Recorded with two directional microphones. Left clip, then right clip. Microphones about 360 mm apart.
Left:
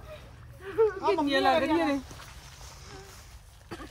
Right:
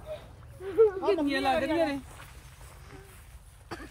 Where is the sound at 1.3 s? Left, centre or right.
Centre.